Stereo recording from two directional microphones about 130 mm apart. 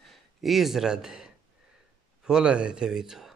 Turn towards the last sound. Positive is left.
turn(degrees=-5)  # may be behind; listen again after turning